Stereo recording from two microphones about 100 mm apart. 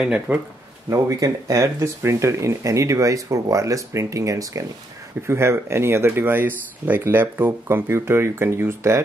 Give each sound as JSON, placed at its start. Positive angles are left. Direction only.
{"t": 0.3, "sound": "speech", "side_deg": -20}
{"t": 0.8, "sound": "speech", "side_deg": -30}